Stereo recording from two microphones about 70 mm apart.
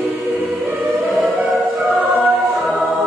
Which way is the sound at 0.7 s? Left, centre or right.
Right.